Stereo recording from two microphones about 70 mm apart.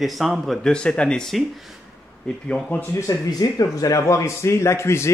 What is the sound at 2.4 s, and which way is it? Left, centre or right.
Speech, centre.